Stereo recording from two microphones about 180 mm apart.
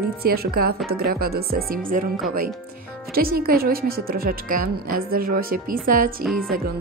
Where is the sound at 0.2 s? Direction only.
60° right (ahead or behind).